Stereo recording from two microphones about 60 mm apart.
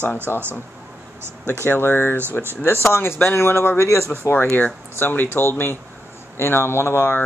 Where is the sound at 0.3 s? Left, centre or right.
Left.